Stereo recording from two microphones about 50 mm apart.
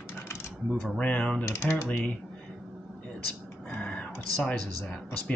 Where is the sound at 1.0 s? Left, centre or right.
Left.